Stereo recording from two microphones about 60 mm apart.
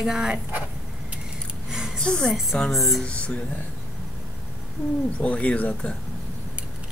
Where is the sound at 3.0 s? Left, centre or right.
Centre.